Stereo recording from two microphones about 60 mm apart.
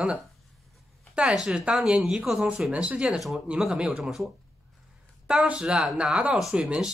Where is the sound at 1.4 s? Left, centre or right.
Centre.